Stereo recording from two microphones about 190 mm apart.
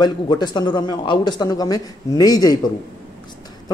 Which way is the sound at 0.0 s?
25° left (ahead or behind).